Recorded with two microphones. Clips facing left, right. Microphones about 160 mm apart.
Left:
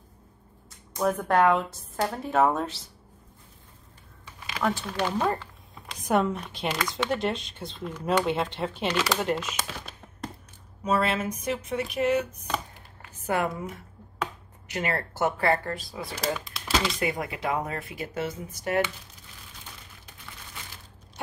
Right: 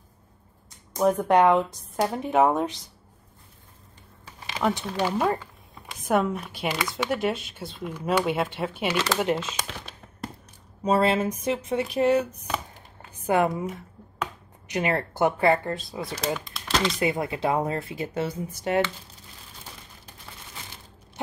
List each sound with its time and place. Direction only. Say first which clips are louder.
0.9 s speech: right 4 dB; 15° right (ahead or behind)
4.6 s speech: right 2 dB; 20° right (ahead or behind)
9.2 s speech: right 3 dB; 20° right (ahead or behind)
9.7 s a sound: even; 5° left (ahead or behind)
10.8 s speech: right 4 dB; 30° right (ahead or behind)
13.3 s speech: right 5 dB; 20° right (ahead or behind)
14.7 s speech: right 4 dB; 20° right (ahead or behind)
16.4 s typewriter: right 2 dB; 5° left (ahead or behind)
17.0 s speech: right 4 dB; 25° right (ahead or behind)